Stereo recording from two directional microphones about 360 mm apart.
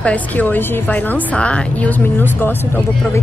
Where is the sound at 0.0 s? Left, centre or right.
Centre.